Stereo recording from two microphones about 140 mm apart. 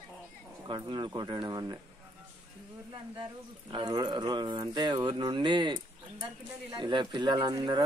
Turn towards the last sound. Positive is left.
turn(degrees=-30)  # may be behind; listen again after turning